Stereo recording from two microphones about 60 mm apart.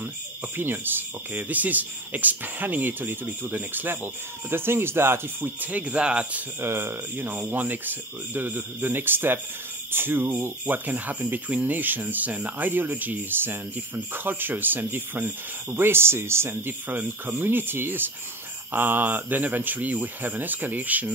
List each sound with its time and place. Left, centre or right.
0.6 s speech: right; by 6.4 s centre
6.6 s speech: right